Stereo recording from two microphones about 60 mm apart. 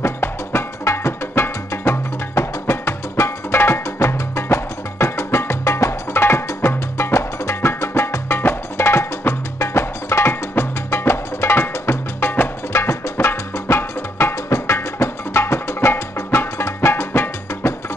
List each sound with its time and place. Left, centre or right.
0.0 s music: left
12.7 s music: left